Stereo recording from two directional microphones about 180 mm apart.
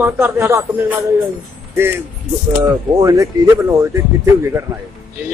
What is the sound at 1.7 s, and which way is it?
Speech, 15° right (ahead or behind).